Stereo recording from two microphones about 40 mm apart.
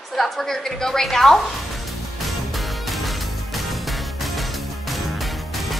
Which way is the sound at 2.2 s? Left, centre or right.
Centre.